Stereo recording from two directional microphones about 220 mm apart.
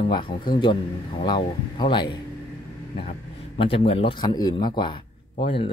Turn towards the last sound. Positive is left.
turn(degrees=25)  # may be behind; listen again after turning